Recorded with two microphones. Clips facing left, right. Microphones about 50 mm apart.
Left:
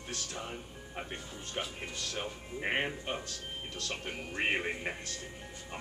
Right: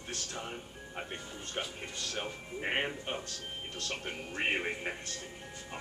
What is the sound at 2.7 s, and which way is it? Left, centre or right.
Speech, centre.